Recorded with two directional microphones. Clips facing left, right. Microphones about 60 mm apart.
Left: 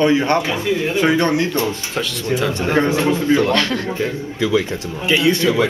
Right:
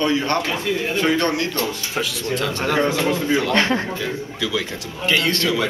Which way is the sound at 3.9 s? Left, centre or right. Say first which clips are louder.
Left 4 dB; left.